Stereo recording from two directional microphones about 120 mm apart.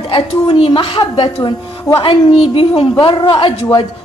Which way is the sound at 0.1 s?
45° left (ahead or behind).